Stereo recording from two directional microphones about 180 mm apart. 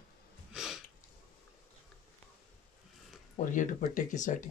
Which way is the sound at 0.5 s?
5° right (ahead or behind).